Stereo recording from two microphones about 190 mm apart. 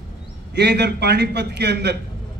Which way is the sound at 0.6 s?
60° right (ahead or behind).